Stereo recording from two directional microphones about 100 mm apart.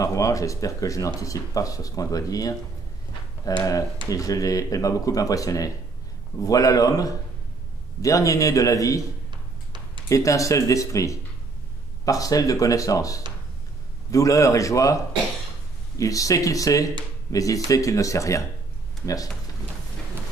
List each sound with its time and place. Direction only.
0.0 s speech: 35° left (ahead or behind)
10.0 s speech: 35° left (ahead or behind)
16.0 s speech: 35° left (ahead or behind)